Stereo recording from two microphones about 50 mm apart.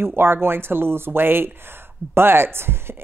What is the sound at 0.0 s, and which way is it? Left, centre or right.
A woman's voice, right.